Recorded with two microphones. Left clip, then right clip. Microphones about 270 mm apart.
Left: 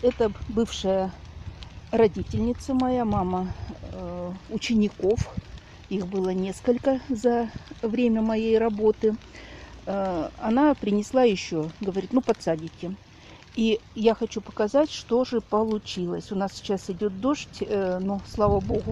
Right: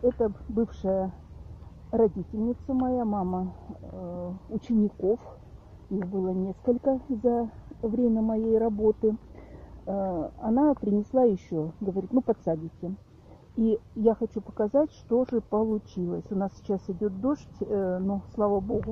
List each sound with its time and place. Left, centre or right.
0.0 s speech: left
14.0 s speech: left